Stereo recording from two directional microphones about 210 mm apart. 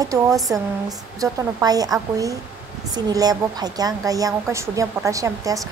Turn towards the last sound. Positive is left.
turn(degrees=-15)  # may be behind; listen again after turning